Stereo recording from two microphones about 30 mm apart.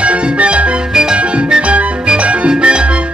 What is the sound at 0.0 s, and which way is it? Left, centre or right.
Music, right.